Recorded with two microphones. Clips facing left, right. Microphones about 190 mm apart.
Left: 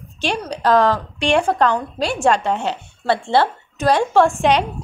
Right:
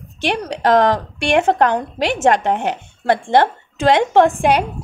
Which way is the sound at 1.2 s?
15° right (ahead or behind).